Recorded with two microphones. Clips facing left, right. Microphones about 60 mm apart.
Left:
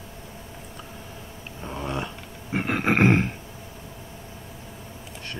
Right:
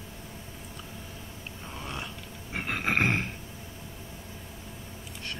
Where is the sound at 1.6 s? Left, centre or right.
Left.